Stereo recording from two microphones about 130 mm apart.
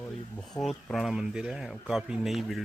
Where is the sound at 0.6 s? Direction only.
Centre (ahead or behind).